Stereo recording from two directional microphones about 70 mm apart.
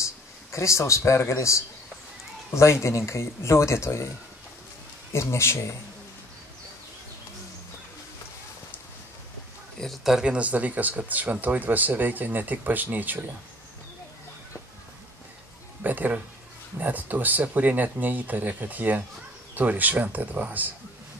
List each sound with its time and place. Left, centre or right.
0.0 s a man's voice: left
5.1 s speech: left
10.0 s speech: centre
15.8 s speech: right